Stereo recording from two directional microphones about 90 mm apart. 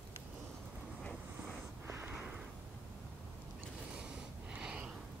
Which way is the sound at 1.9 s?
20° right (ahead or behind).